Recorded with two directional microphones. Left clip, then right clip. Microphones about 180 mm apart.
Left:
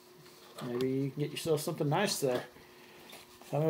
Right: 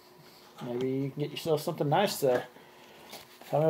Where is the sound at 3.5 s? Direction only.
5° right (ahead or behind).